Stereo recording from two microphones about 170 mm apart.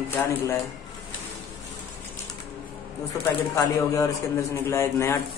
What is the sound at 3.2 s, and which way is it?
A man's voice, 15° left (ahead or behind).